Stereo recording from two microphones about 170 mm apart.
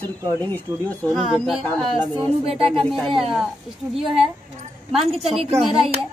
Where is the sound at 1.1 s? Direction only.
Centre (ahead or behind).